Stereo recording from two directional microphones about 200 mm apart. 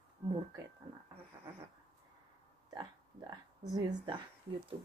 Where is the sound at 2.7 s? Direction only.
20° right (ahead or behind).